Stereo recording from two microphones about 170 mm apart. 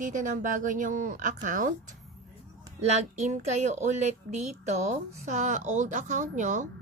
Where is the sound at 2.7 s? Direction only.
40° right (ahead or behind).